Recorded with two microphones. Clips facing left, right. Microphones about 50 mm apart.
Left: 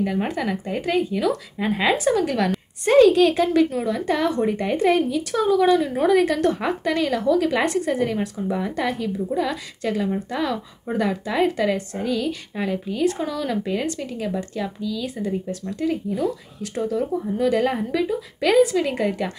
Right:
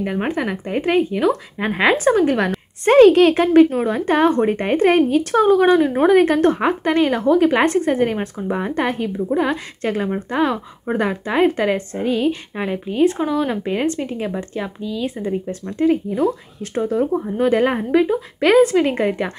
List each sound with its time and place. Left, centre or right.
0.0 s a woman's voice: right